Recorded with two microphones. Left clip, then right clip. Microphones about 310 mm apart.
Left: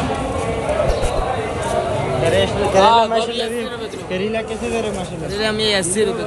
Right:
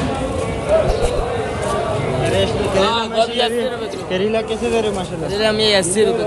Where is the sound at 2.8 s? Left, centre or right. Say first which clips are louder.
Left 7 dB; centre.